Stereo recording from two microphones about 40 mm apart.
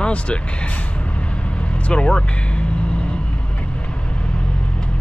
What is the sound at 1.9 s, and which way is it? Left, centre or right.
Vehicle, left.